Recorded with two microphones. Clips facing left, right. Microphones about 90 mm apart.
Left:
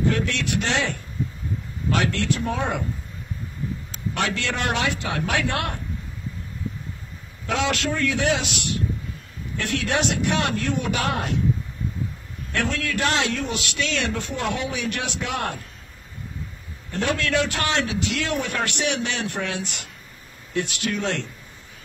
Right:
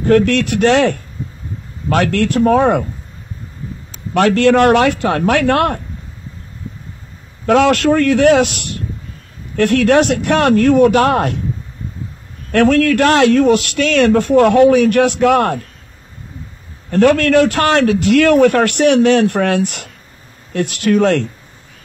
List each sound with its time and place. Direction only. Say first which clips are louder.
0.0 s a man's voice: right 12 dB; 55° right (ahead or behind)
4.1 s a man's voice: right 15 dB; 50° right (ahead or behind)
7.4 s a man's voice: right 13 dB; 55° right (ahead or behind)
12.4 s a man's voice: right 15 dB; 55° right (ahead or behind)
16.9 s a man's voice: right 13 dB; 55° right (ahead or behind)